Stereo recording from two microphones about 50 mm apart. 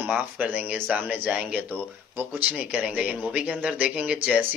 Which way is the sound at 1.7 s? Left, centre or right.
Right.